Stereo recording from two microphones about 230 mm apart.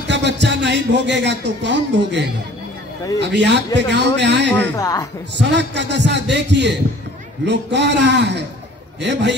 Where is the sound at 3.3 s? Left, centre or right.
Right.